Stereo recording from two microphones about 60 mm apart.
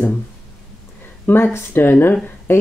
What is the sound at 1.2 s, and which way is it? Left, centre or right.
Speech, left.